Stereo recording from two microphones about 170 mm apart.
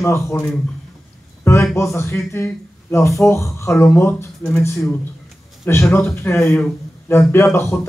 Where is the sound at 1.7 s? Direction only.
15° left (ahead or behind).